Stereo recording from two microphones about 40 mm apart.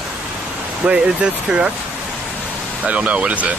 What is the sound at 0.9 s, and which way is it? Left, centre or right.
Speech, right.